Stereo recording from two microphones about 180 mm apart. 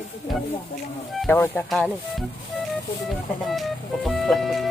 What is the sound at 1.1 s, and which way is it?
Speech, centre (ahead or behind).